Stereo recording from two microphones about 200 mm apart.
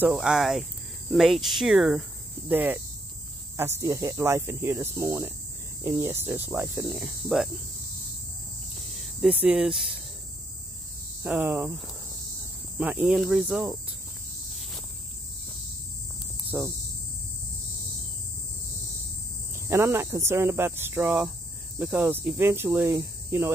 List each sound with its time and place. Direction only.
0.0 s speech: 5° right (ahead or behind)
8.7 s cricket: centre (ahead or behind)
11.2 s speech: 5° right (ahead or behind)
16.4 s cricket: 10° right (ahead or behind)
19.7 s speech: 15° right (ahead or behind)